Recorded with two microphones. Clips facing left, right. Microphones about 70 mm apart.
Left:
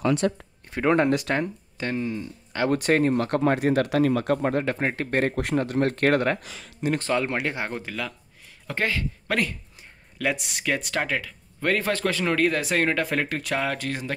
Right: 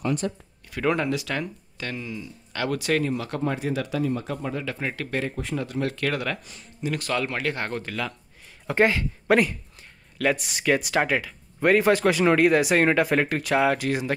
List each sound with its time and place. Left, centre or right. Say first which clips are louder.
0.0 s speech: left 4 dB; left
0.7 s speech: left 3 dB; left
1.0 s speech: left 4 dB; left
1.3 s speech: left 4 dB; left
2.5 s speech: left 4 dB; left
2.8 s speech: left 4 dB; left
5.2 s speech: left 5 dB; left
6.9 s speech: left 3 dB; left; by 8.0 s centre
8.6 s speech: right 6 dB; right
9.8 s speech: right 6 dB; centre